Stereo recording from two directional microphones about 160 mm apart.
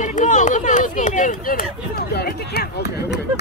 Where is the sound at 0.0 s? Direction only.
50° left (ahead or behind).